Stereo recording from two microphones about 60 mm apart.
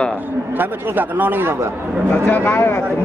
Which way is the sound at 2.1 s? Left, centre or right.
Left.